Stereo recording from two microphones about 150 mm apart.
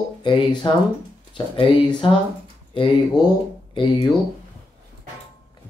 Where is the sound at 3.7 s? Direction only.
30° left (ahead or behind).